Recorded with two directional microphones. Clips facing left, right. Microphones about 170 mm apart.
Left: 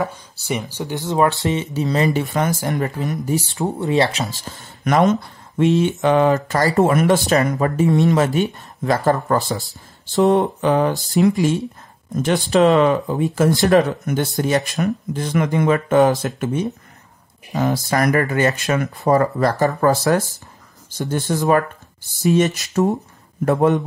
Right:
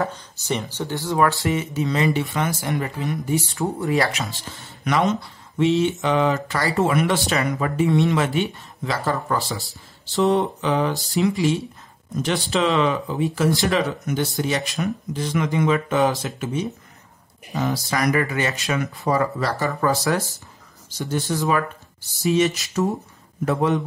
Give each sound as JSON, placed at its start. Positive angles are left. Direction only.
{"t": 0.0, "sound": "speech", "side_deg": 10}
{"t": 3.7, "sound": "speech", "side_deg": 25}
{"t": 4.2, "sound": "speech", "side_deg": 45}
{"t": 12.5, "sound": "speech", "side_deg": 45}